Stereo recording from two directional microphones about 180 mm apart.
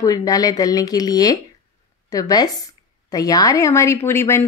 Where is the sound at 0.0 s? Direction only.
20° left (ahead or behind).